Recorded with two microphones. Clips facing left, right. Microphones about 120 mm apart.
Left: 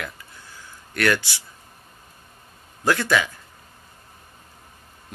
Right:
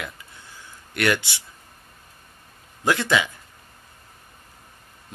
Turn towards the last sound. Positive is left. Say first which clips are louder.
# left 1 dB
turn(degrees=-20)  # may be behind; listen again after turning